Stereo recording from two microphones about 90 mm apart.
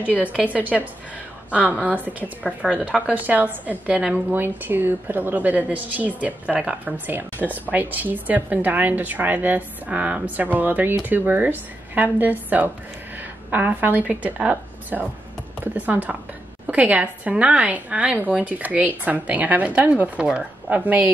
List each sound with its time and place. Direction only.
0.1 s a woman's voice: 15° left (ahead or behind)
0.4 s a woman's voice: 15° right (ahead or behind)
1.9 s a woman's voice: 20° right (ahead or behind)